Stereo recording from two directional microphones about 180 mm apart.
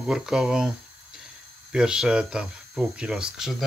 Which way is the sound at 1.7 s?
5° right (ahead or behind).